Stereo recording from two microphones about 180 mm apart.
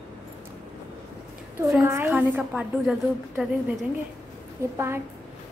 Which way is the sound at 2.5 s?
5° right (ahead or behind).